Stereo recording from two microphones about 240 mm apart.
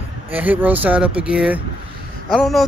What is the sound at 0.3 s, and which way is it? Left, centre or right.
Speech, centre.